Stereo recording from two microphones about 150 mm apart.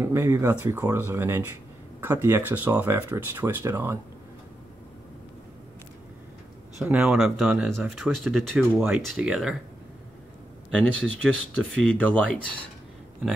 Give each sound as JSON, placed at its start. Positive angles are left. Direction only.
{"t": 0.0, "sound": "speech", "side_deg": -15}
{"t": 6.8, "sound": "speech", "side_deg": -5}
{"t": 10.7, "sound": "speech", "side_deg": 5}